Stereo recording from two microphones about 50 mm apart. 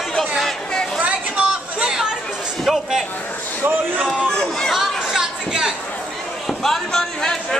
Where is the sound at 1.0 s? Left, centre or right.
Right.